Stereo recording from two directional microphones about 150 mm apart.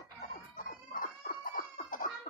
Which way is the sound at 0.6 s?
65° left (ahead or behind).